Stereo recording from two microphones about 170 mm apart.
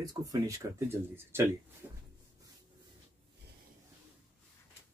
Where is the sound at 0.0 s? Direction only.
20° right (ahead or behind).